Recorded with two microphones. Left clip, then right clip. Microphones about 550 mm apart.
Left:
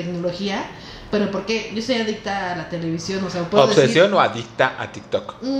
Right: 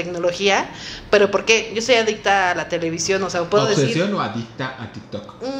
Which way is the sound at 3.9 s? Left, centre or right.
Left.